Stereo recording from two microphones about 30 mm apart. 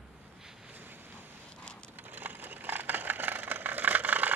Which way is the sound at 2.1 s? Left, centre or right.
Right.